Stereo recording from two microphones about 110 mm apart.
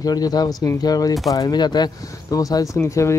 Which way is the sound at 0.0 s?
35° left (ahead or behind).